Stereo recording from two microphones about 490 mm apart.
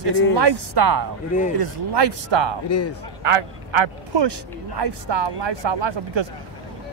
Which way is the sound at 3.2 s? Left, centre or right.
Right.